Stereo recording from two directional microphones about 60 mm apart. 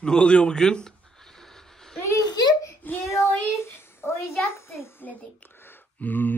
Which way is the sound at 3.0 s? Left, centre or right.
Left.